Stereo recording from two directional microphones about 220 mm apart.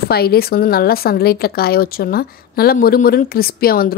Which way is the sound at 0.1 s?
45° left (ahead or behind).